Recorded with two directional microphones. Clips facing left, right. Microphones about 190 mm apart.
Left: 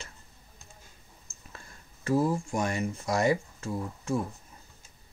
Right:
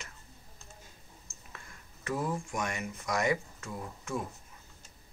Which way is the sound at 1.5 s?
35° left (ahead or behind).